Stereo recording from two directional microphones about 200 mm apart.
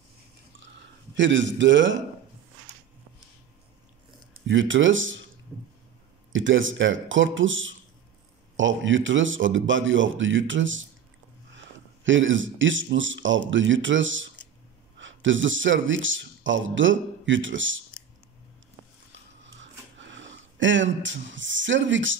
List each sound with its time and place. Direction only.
1.1 s speech: 65° right (ahead or behind)
4.5 s speech: 70° right (ahead or behind)
6.3 s a man's voice: 75° right (ahead or behind)
19.4 s a sound: 65° right (ahead or behind)